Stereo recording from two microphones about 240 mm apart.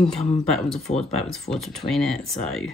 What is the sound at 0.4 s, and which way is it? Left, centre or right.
Speech, centre.